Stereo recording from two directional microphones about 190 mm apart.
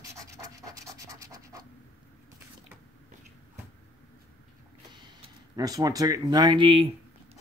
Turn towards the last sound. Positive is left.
turn(degrees=-25)  # may be behind; listen again after turning